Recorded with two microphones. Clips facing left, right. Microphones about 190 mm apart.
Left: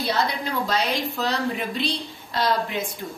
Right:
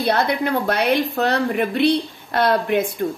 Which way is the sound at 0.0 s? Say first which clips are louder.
Right 6 dB; 60° right (ahead or behind).